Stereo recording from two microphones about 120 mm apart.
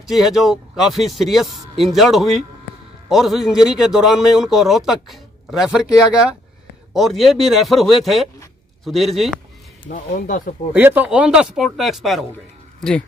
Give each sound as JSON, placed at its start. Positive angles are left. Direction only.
{"t": 0.0, "sound": "speech", "side_deg": 0}
{"t": 9.8, "sound": "speech", "side_deg": 90}
{"t": 10.7, "sound": "speech", "side_deg": -15}